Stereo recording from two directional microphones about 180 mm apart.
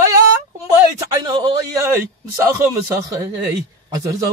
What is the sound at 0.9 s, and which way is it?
Speech, 25° right (ahead or behind).